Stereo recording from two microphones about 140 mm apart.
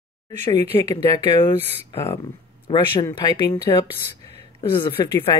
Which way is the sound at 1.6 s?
20° left (ahead or behind).